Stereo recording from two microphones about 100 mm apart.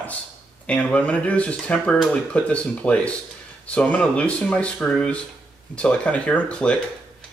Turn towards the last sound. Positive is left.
turn(degrees=10)  # may be behind; listen again after turning